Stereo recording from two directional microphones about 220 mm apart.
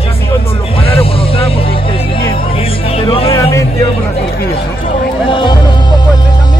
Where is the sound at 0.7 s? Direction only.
25° left (ahead or behind).